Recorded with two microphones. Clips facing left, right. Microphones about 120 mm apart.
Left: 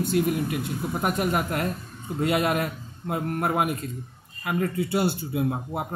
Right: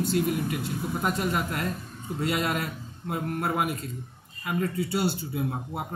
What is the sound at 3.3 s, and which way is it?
Speech, 55° left (ahead or behind).